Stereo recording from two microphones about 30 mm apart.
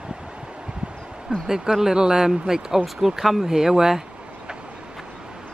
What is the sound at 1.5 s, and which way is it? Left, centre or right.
Speech, centre.